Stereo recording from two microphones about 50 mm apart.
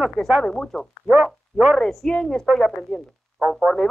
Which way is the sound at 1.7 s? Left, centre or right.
Centre.